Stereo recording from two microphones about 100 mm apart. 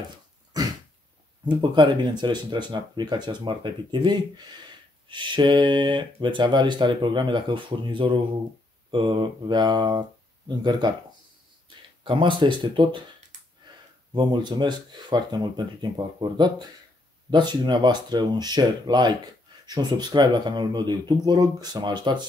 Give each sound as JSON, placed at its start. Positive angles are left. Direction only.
{"t": 1.4, "sound": "speech", "side_deg": -50}
{"t": 12.0, "sound": "speech", "side_deg": -55}
{"t": 14.1, "sound": "speech", "side_deg": -45}